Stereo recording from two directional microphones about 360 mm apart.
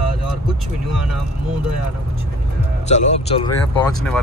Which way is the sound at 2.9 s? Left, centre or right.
Centre.